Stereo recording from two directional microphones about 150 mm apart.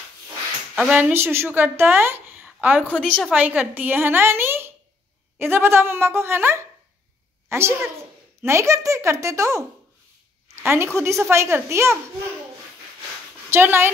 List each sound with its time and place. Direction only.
0.7 s a woman's voice: 10° right (ahead or behind)
2.9 s a woman's voice: 10° left (ahead or behind)
3.3 s a woman's voice: 10° right (ahead or behind)
13.5 s a woman's voice: 15° right (ahead or behind)